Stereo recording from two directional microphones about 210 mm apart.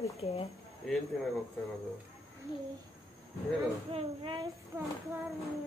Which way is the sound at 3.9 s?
25° right (ahead or behind).